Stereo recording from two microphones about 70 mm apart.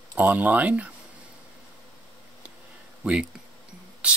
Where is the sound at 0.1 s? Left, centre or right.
Right.